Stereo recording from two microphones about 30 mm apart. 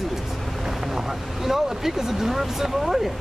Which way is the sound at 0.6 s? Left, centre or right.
Centre.